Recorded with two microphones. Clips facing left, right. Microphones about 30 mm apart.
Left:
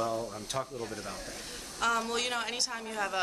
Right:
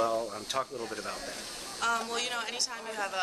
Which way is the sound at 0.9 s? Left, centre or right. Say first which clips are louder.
Right 2 dB; right.